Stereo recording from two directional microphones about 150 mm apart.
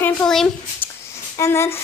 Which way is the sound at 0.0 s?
5° left (ahead or behind).